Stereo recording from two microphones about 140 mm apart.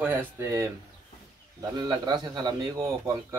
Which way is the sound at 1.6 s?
30° right (ahead or behind).